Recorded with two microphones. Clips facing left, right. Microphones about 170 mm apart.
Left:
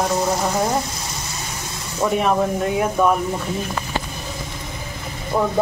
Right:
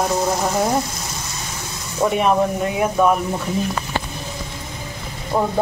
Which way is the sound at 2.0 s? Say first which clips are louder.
Right 1 dB; 10° right (ahead or behind).